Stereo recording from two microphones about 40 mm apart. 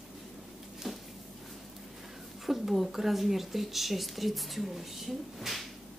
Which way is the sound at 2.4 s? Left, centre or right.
Centre.